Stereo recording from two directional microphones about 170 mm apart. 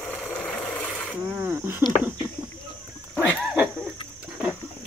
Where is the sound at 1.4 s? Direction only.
15° right (ahead or behind).